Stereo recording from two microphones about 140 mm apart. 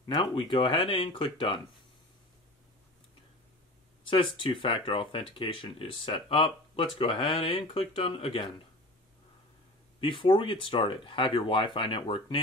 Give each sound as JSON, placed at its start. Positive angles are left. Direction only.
{"t": 0.0, "sound": "speech", "side_deg": 35}
{"t": 4.1, "sound": "speech", "side_deg": 35}
{"t": 9.9, "sound": "speech", "side_deg": 35}